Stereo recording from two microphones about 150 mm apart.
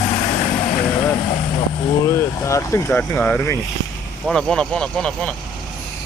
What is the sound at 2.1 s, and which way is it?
Speech, 20° left (ahead or behind).